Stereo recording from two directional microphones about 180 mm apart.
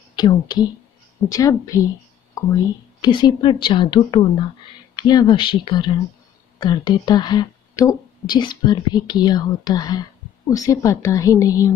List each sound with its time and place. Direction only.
0.1 s a woman's voice: 25° left (ahead or behind)